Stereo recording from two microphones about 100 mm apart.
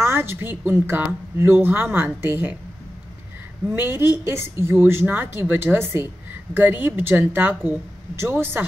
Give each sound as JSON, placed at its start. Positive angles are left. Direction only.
{"t": 0.0, "sound": "speech", "side_deg": -20}
{"t": 3.7, "sound": "speech", "side_deg": -20}